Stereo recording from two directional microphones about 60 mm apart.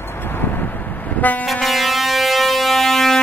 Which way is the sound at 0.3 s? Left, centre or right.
Left.